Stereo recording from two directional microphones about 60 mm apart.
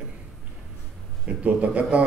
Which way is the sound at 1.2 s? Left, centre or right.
Right.